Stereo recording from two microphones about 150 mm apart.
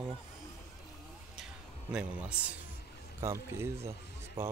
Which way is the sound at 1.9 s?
5° right (ahead or behind).